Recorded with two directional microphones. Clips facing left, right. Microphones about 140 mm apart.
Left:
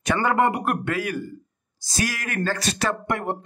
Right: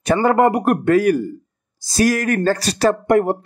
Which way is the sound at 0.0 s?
35° right (ahead or behind).